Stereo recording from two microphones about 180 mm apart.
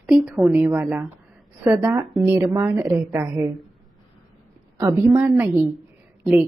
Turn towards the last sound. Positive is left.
turn(degrees=-10)  # may be behind; listen again after turning